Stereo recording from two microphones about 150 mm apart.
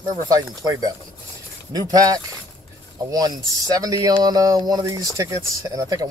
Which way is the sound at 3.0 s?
25° right (ahead or behind).